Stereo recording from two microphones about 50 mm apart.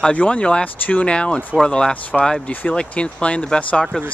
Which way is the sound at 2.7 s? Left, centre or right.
Left.